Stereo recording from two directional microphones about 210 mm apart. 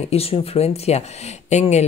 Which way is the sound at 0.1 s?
30° left (ahead or behind).